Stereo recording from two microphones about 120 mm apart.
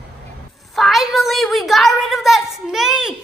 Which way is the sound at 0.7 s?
Centre (ahead or behind).